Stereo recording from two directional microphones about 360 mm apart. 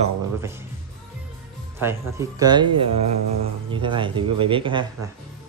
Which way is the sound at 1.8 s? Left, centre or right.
Centre.